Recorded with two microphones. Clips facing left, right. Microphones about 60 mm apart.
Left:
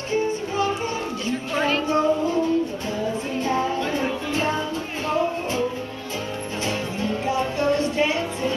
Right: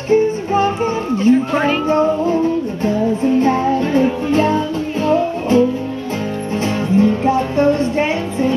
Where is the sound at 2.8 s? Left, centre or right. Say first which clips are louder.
Right 10 dB; right.